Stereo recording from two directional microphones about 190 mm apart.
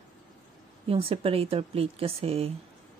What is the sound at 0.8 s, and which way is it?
Speech, 30° right (ahead or behind).